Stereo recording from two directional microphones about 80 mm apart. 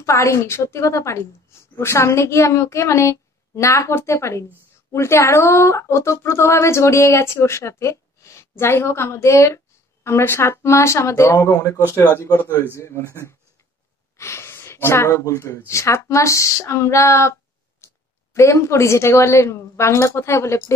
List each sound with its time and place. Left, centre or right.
0.0 s speech: left
14.1 s speech: left